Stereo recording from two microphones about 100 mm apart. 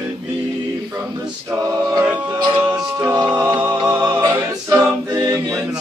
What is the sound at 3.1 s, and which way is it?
Music, 45° right (ahead or behind).